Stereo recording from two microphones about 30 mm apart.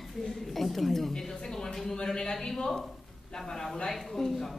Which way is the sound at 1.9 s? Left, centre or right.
Left.